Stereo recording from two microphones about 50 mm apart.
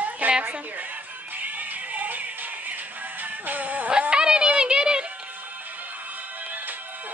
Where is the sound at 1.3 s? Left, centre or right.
Right.